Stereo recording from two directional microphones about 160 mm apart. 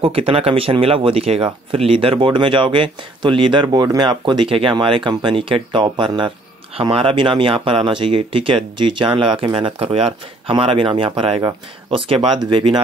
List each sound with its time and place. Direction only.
0.0 s speech: 35° right (ahead or behind)